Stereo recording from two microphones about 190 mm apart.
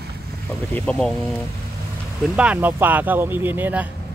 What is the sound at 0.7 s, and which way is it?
Speech, 5° left (ahead or behind).